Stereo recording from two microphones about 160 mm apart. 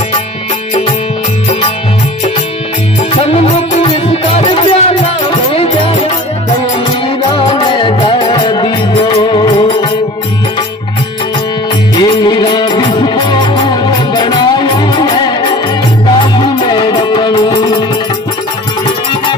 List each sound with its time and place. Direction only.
3.3 s music: 45° left (ahead or behind)
11.9 s music: 25° left (ahead or behind)